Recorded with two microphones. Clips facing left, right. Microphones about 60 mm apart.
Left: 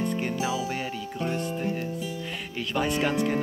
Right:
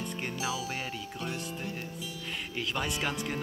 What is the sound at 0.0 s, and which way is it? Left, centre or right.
Music, centre.